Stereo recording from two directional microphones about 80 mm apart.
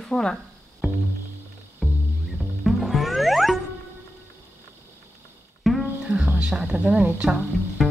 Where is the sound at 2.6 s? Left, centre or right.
Centre.